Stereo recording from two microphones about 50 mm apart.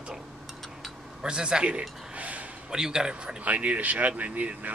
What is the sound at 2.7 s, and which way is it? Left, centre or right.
Speech, centre.